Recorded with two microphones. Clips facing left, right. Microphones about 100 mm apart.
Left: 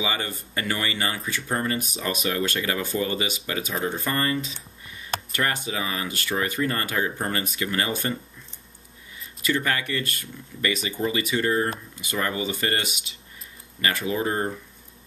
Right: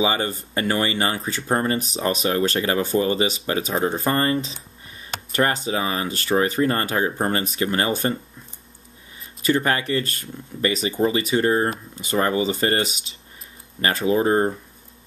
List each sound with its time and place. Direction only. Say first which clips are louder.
0.0 s speech: right 7 dB; 30° right (ahead or behind)
9.5 s speech: right 5 dB; 30° right (ahead or behind)